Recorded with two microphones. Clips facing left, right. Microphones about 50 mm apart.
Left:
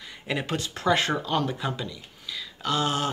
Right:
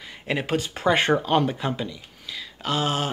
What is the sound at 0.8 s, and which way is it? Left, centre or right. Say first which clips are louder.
Speech: right 3 dB; right.